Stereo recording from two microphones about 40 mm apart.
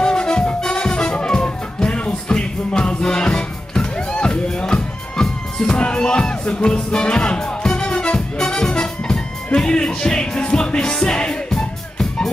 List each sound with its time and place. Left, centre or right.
0.0 s music: left